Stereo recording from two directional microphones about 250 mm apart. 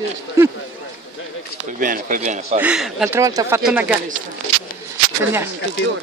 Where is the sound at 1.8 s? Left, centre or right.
Right.